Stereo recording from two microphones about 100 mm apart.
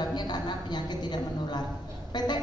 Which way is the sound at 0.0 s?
45° left (ahead or behind).